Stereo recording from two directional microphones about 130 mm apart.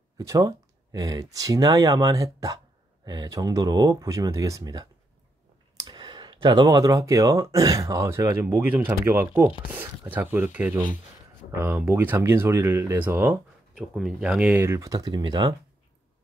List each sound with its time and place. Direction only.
0.2 s speech: 25° right (ahead or behind)
13.7 s speech: centre (ahead or behind)
14.5 s speech: 20° right (ahead or behind)